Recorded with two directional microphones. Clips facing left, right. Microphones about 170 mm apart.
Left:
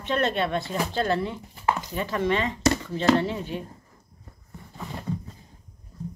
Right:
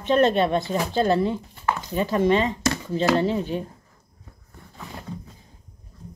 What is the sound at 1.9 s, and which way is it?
Speech, 25° right (ahead or behind).